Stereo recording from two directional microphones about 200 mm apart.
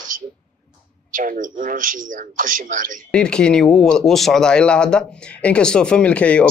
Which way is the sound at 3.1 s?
5° left (ahead or behind).